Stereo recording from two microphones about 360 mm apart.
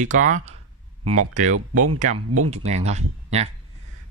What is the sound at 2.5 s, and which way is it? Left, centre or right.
Speech, centre.